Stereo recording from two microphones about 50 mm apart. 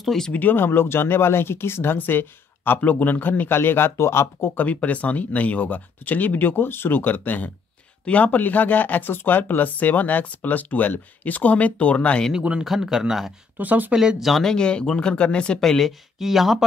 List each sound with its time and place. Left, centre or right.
0.0 s speech: centre
0.3 s speech: left
4.6 s speech: left
12.4 s speech: centre
12.6 s a man's voice: centre
13.6 s speech: right
13.9 s speech: centre
14.3 s speech: centre
15.6 s speech: centre
16.2 s speech: centre